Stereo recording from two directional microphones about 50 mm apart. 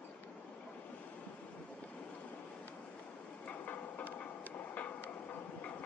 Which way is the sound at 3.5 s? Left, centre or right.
Left.